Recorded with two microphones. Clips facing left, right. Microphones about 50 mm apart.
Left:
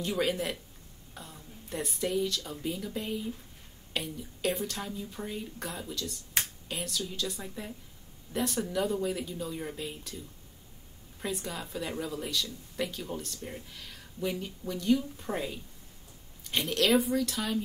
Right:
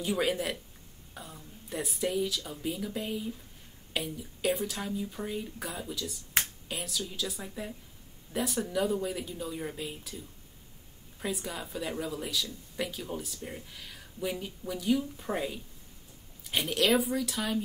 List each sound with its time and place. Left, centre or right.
0.0 s speech: centre